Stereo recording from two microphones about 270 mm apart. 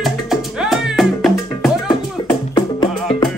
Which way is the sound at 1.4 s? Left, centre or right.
Centre.